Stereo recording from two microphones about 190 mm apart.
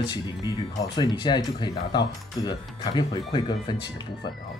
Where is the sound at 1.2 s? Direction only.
25° left (ahead or behind).